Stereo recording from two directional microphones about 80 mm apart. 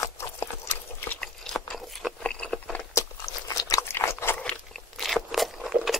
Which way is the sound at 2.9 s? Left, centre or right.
Left.